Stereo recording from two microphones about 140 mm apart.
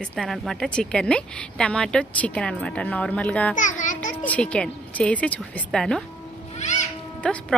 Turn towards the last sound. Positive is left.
turn(degrees=5)  # may be behind; listen again after turning